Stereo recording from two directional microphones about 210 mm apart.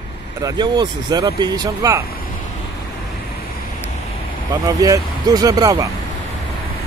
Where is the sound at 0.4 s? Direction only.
20° right (ahead or behind).